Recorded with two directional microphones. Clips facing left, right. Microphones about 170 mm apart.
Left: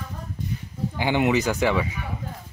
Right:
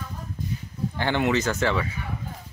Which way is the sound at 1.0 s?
15° left (ahead or behind).